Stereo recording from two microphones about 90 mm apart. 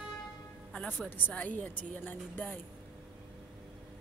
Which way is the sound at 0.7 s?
10° left (ahead or behind).